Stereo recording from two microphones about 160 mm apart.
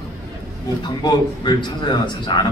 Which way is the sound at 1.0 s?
25° left (ahead or behind).